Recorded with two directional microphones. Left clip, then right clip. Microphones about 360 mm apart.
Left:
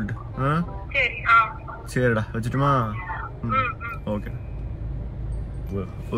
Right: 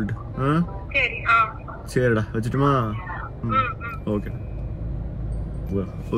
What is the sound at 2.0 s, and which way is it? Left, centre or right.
Speech, left.